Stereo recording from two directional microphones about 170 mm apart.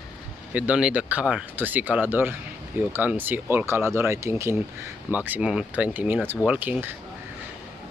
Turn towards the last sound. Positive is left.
turn(degrees=-10)  # may be behind; listen again after turning